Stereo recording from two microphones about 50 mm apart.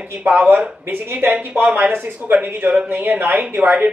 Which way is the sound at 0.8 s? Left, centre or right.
Right.